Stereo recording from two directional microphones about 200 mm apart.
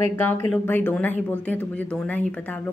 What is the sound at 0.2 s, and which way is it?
Speech, 10° left (ahead or behind).